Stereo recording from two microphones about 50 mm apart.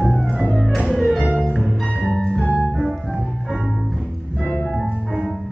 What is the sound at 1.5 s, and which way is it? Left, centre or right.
Music, centre.